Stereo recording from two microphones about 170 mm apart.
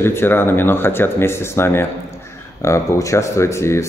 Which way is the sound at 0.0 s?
15° left (ahead or behind).